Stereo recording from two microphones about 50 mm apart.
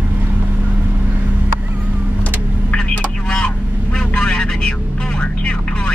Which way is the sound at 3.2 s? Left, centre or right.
Left.